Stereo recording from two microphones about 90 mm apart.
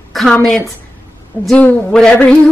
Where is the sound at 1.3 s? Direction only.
25° left (ahead or behind).